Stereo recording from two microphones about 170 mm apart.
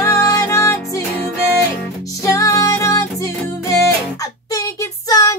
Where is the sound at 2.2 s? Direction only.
20° left (ahead or behind).